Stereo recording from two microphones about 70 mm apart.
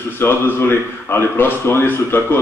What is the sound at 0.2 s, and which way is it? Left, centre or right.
A man's voice, left.